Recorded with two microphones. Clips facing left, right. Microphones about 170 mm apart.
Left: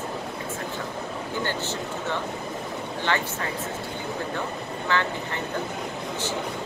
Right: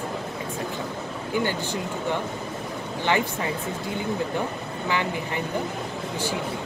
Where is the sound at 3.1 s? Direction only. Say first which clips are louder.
Right 4 dB; 15° right (ahead or behind).